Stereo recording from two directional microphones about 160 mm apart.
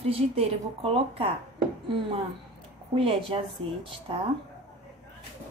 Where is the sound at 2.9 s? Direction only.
35° right (ahead or behind).